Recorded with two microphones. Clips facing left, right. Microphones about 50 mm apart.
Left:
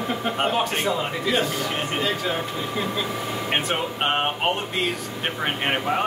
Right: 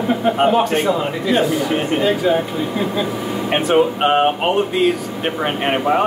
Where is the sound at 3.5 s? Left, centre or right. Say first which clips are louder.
Right 11 dB; centre.